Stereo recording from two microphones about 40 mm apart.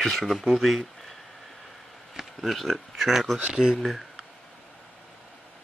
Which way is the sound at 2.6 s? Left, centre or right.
Centre.